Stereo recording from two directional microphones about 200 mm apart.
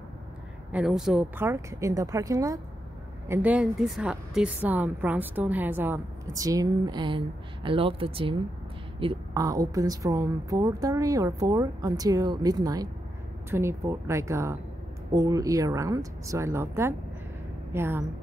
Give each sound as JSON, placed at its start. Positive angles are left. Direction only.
{"t": 0.7, "sound": "a woman's voice", "side_deg": -5}